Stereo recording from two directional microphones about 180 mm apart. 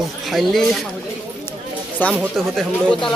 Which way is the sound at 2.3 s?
Centre (ahead or behind).